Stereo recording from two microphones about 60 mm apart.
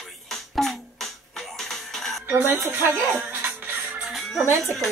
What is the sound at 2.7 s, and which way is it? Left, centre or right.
Music, right.